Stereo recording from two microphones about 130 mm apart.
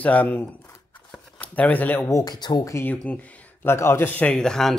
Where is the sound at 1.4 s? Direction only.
10° left (ahead or behind).